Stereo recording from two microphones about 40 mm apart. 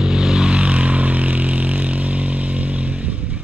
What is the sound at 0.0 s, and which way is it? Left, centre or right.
Vehicle, centre.